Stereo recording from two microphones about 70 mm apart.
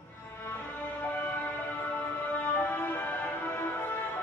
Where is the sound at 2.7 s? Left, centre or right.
Left.